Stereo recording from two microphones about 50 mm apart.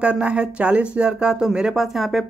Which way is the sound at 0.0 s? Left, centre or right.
Right.